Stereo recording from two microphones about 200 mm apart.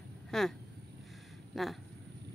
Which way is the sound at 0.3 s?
Centre (ahead or behind).